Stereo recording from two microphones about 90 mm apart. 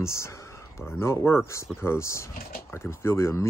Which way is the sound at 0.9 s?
30° left (ahead or behind).